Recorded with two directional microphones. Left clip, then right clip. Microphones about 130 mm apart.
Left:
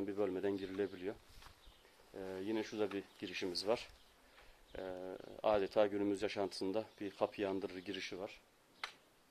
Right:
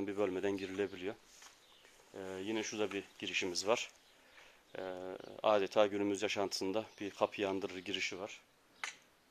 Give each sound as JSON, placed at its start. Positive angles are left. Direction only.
{"t": 0.0, "sound": "speech", "side_deg": -40}
{"t": 2.1, "sound": "speech", "side_deg": -30}